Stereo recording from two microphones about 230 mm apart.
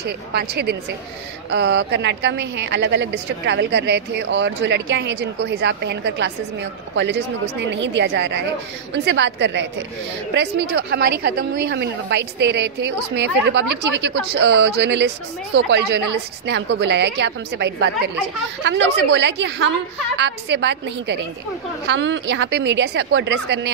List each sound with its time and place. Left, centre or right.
0.0 s a woman's voice: right
7.7 s a woman's voice: right